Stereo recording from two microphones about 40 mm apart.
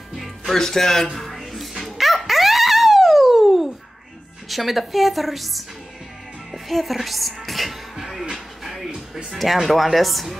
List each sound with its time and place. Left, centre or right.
0.5 s a sound: centre
4.5 s a woman's voice: centre
6.5 s music: centre